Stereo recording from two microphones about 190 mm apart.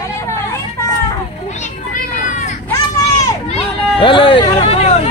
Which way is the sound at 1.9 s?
40° left (ahead or behind).